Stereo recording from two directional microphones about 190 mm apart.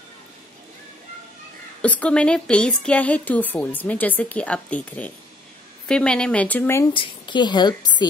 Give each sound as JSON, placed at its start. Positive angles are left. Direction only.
{"t": 1.8, "sound": "a woman's voice", "side_deg": 5}
{"t": 6.9, "sound": "a woman's voice", "side_deg": 25}